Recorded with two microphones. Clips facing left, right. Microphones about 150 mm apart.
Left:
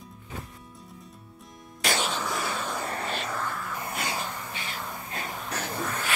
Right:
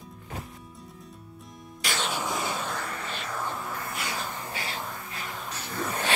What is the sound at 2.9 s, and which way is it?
Vehicle, 40° left (ahead or behind).